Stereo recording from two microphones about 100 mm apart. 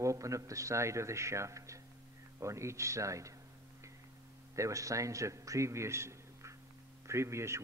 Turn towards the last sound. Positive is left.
turn(degrees=-30)  # may be behind; listen again after turning